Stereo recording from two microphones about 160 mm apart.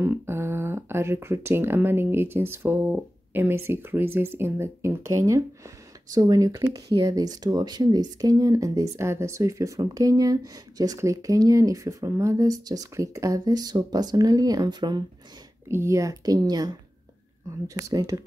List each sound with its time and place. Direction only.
0.0 s speech: 15° right (ahead or behind)